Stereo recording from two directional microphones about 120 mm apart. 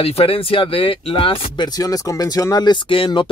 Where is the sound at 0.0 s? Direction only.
55° left (ahead or behind).